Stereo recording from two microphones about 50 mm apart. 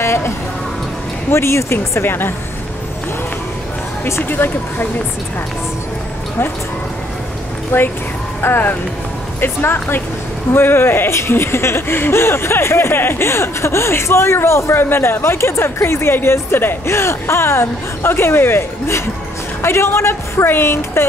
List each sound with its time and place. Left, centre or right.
0.0 s a sound: left
1.3 s speech: left
4.2 s speech: left
7.7 s speech: left